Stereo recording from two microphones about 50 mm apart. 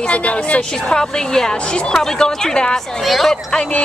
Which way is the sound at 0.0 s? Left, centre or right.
Left.